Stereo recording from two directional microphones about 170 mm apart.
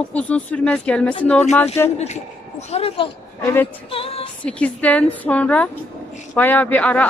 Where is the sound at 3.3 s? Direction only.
10° left (ahead or behind).